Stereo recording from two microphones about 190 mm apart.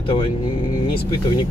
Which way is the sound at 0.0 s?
30° left (ahead or behind).